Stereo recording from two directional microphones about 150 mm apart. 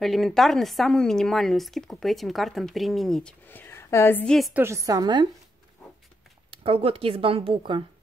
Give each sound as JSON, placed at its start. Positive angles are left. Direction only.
{"t": 0.0, "sound": "speech", "side_deg": 0}
{"t": 4.6, "sound": "a woman's voice", "side_deg": -20}
{"t": 6.5, "sound": "speech", "side_deg": -40}